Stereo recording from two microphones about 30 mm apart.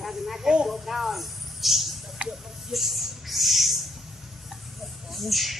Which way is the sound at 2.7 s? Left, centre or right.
Centre.